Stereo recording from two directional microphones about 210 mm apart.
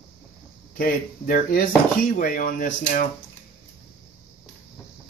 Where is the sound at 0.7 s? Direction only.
45° left (ahead or behind).